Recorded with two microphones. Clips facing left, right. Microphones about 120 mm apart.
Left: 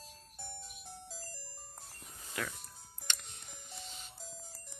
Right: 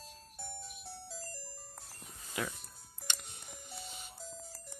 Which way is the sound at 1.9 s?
10° right (ahead or behind).